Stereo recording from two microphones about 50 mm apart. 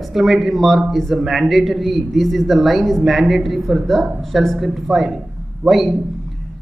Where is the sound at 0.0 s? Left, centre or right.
Centre.